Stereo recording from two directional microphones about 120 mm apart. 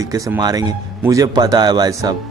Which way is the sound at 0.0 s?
25° right (ahead or behind).